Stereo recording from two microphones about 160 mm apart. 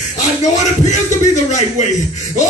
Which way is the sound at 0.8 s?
50° left (ahead or behind).